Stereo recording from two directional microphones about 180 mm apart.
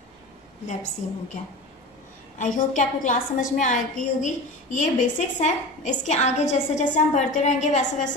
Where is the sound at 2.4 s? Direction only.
45° left (ahead or behind).